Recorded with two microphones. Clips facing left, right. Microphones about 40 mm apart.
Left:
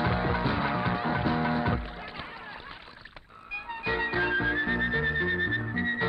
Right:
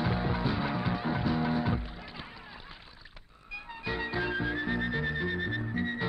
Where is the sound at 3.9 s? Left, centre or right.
Centre.